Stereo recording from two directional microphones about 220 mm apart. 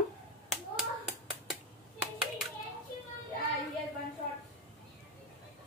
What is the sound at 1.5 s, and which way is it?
Hands, centre (ahead or behind).